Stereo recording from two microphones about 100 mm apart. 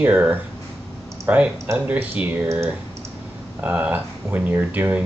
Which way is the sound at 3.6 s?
15° right (ahead or behind).